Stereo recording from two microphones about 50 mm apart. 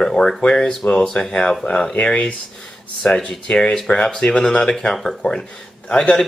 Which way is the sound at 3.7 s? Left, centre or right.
Centre.